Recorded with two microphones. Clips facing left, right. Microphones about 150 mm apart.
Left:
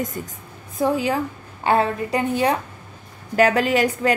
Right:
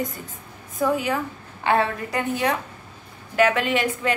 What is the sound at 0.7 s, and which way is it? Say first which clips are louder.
A woman's voice: left 2 dB; 30° left (ahead or behind).